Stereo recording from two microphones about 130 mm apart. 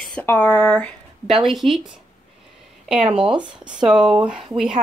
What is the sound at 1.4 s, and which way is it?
Speech, centre (ahead or behind).